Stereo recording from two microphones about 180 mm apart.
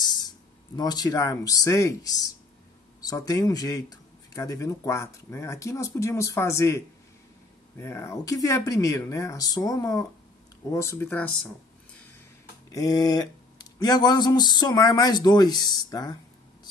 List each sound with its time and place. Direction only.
0.7 s speech: 20° left (ahead or behind)
12.7 s speech: 20° left (ahead or behind)